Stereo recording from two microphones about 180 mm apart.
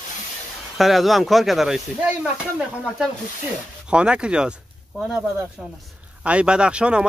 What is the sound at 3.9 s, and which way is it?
Speech, 5° right (ahead or behind).